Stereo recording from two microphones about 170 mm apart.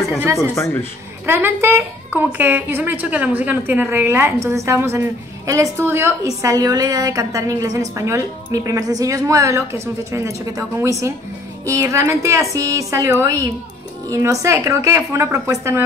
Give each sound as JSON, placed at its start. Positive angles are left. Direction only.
{"t": 0.4, "sound": "speech", "side_deg": 15}
{"t": 1.2, "sound": "a woman's voice", "side_deg": -15}